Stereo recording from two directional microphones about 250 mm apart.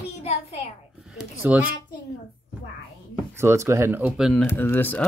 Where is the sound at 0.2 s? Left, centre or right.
Left.